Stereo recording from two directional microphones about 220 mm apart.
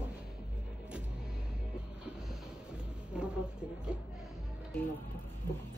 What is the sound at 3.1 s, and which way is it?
Speech, 5° right (ahead or behind).